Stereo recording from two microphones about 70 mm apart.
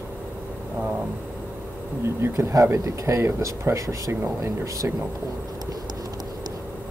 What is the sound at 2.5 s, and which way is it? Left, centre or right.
Speech, right.